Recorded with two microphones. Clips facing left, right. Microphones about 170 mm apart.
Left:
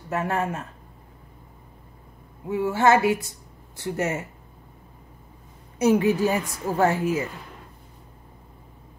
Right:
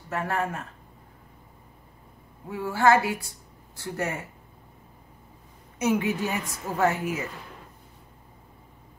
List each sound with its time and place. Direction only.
0.1 s a woman's voice: 20° left (ahead or behind)
2.5 s a woman's voice: 20° left (ahead or behind)
5.8 s a woman's voice: 35° left (ahead or behind)